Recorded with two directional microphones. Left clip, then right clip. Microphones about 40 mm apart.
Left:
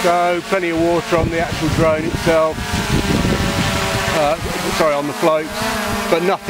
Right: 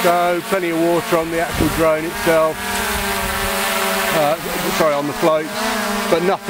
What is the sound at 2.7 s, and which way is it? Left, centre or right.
Vehicle, right.